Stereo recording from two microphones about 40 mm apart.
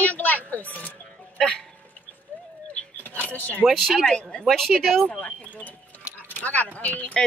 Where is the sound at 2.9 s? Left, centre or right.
Left.